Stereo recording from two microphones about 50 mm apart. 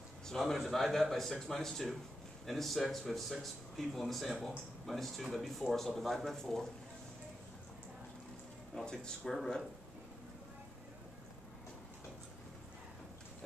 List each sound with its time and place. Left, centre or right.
0.3 s a man's voice: centre
8.8 s speech: centre
9.2 s speech: centre